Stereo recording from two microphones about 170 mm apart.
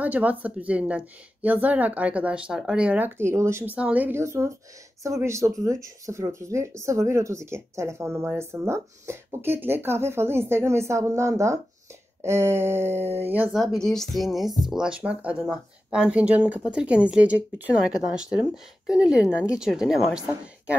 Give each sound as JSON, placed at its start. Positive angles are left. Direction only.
{"t": 0.0, "sound": "speech", "side_deg": -10}
{"t": 13.6, "sound": "speech", "side_deg": 0}